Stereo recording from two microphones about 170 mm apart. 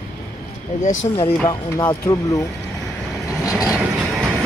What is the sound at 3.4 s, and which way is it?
Vehicle, 5° right (ahead or behind).